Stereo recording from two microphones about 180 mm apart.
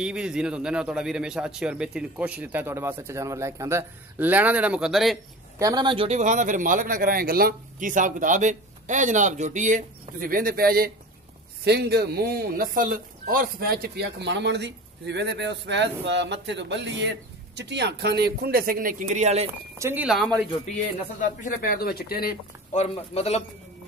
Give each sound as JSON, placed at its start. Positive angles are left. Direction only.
{"t": 0.0, "sound": "a man's voice", "side_deg": -5}
{"t": 5.6, "sound": "speech", "side_deg": -20}
{"t": 19.8, "sound": "a man's voice", "side_deg": -10}
{"t": 21.2, "sound": "speech", "side_deg": 45}
{"t": 22.8, "sound": "a man's voice", "side_deg": 35}